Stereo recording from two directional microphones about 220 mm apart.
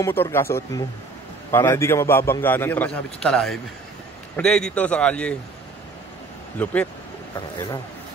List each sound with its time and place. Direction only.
0.0 s a man's voice: 10° left (ahead or behind)
6.6 s a man's voice: 5° left (ahead or behind)
7.3 s a man's voice: 15° left (ahead or behind)